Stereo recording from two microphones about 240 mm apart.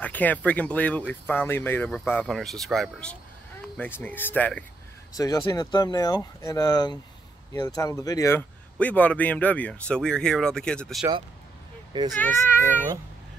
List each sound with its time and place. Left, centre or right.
0.0 s a man's voice: centre
11.0 s speech: centre
12.1 s speech: centre